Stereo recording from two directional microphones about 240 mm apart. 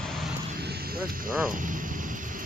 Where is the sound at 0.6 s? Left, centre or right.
Right.